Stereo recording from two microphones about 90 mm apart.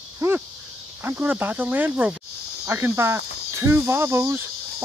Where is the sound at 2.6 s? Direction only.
30° right (ahead or behind).